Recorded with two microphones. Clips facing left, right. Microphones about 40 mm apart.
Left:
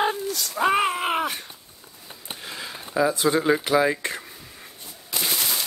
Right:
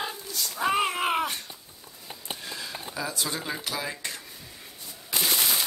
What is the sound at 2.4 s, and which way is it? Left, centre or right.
Speech, left.